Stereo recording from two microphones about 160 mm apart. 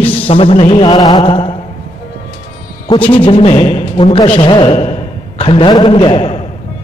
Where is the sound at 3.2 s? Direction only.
35° left (ahead or behind).